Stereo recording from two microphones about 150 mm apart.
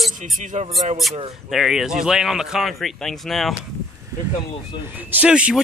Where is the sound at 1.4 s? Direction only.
Centre (ahead or behind).